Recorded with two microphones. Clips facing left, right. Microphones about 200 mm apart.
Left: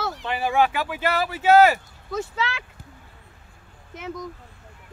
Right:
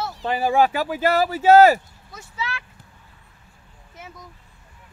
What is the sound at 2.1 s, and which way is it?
Speech, 90° left.